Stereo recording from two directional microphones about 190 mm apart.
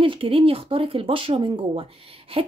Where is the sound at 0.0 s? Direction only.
30° right (ahead or behind).